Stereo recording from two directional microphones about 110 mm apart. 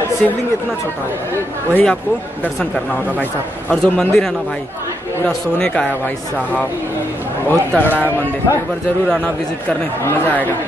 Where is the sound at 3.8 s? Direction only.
10° left (ahead or behind).